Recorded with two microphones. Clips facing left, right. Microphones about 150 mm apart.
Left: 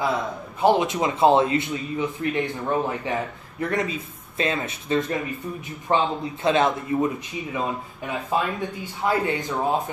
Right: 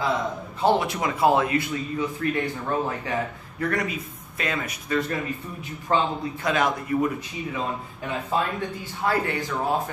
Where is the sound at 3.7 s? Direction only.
25° left (ahead or behind).